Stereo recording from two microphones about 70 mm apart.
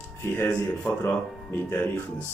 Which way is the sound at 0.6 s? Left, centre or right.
Left.